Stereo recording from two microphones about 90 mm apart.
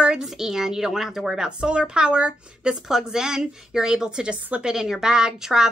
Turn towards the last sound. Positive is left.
turn(degrees=-5)  # may be behind; listen again after turning